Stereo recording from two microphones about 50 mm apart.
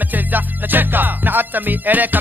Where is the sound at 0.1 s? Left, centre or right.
Right.